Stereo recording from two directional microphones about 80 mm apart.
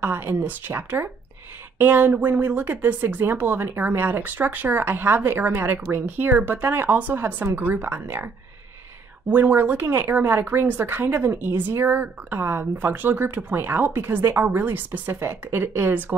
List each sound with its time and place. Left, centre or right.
0.0 s speech: right
9.3 s speech: right